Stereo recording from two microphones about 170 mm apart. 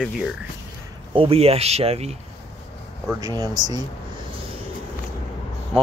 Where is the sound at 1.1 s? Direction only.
35° right (ahead or behind).